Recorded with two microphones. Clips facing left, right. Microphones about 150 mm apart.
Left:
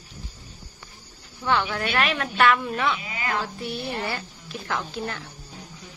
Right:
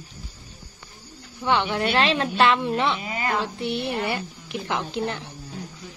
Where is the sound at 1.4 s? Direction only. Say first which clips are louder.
Right 2 dB; 20° right (ahead or behind).